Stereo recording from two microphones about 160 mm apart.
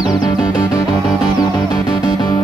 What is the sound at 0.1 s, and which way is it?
Music, 25° left (ahead or behind).